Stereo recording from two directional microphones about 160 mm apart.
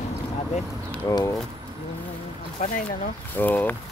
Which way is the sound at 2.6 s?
45° left (ahead or behind).